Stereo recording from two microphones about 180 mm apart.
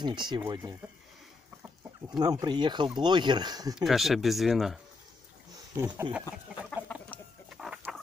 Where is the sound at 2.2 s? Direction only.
20° right (ahead or behind).